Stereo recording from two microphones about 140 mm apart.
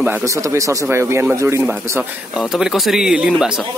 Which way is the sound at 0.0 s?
15° right (ahead or behind).